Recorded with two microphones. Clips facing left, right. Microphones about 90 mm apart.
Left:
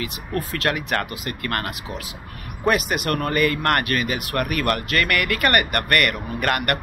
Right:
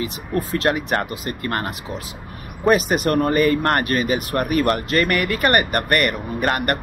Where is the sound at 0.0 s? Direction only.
30° right (ahead or behind).